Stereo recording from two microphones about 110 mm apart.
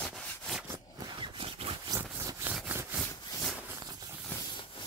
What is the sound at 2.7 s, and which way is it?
Wood, 20° right (ahead or behind).